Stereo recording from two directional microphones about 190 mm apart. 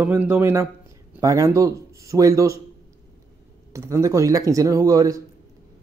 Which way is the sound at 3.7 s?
15° right (ahead or behind).